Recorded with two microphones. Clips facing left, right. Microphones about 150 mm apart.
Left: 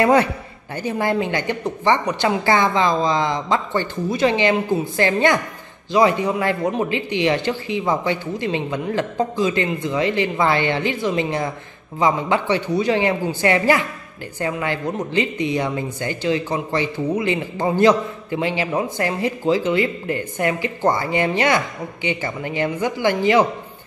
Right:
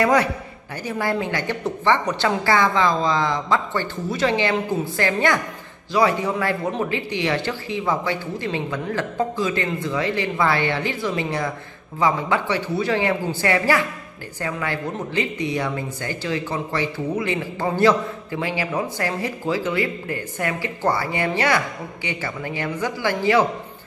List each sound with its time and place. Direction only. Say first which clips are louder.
0.0 s speech: left 3 dB; 25° left (ahead or behind)